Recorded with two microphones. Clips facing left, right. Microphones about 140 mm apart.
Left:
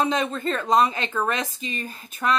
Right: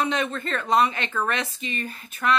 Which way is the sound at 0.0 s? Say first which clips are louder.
Left 2 dB; 30° left (ahead or behind).